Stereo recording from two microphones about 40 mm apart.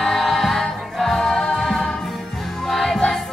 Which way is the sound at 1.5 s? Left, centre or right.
Centre.